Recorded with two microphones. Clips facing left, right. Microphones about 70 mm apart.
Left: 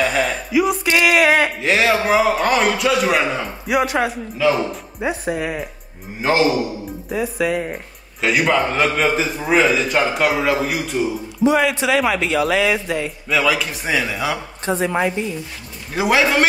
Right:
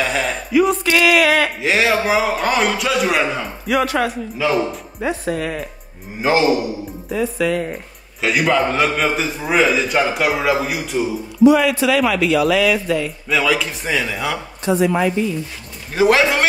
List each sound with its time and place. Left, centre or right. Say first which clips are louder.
0.0 s speech: left 1 dB; centre
0.9 s speech: even; left
1.6 s a man's voice: even; centre
3.6 s speech: right 1 dB; centre
7.1 s speech: right 1 dB; centre
8.2 s a man's voice: even; centre
11.4 s speech: right 4 dB; left
13.3 s a man's voice: even; centre
14.6 s speech: right 3 dB; left
15.9 s a man's voice: right 2 dB; centre